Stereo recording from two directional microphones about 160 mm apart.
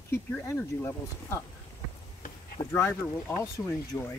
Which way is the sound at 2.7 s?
15° left (ahead or behind).